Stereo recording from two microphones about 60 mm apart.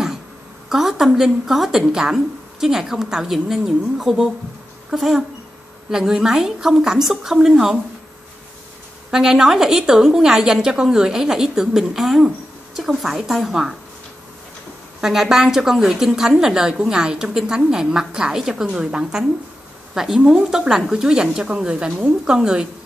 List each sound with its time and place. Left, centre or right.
0.7 s a woman's voice: centre
9.1 s a woman's voice: centre
15.0 s a woman's voice: centre